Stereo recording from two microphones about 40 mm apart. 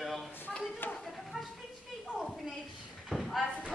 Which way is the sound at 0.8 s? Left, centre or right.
Left.